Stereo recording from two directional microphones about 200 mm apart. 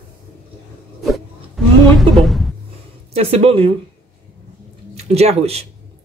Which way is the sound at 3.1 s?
30° right (ahead or behind).